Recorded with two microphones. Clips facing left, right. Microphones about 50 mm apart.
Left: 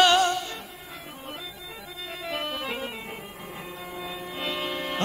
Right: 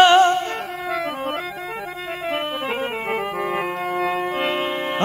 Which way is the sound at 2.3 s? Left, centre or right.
Right.